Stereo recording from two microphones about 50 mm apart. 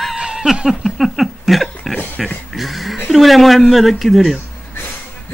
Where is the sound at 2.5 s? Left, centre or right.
Centre.